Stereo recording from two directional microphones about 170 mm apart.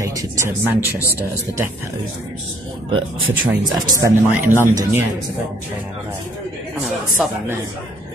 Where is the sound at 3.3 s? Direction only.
15° right (ahead or behind).